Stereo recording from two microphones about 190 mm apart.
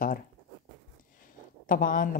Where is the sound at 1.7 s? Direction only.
45° left (ahead or behind).